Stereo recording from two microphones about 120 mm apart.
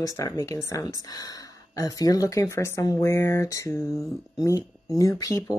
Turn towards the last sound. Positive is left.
turn(degrees=30)  # may be behind; listen again after turning